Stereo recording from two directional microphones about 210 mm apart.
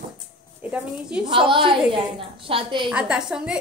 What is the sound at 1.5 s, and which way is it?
A woman's voice, 25° right (ahead or behind).